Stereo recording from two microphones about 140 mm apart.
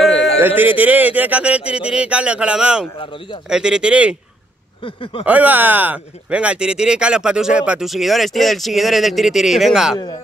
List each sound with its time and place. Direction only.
0.6 s speech: 10° right (ahead or behind)
4.8 s a sound: 40° left (ahead or behind)
5.2 s speech: 10° right (ahead or behind)